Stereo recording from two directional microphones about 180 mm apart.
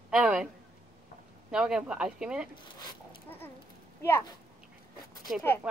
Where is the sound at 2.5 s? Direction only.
25° left (ahead or behind).